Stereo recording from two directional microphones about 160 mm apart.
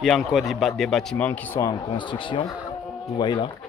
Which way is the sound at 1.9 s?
30° left (ahead or behind).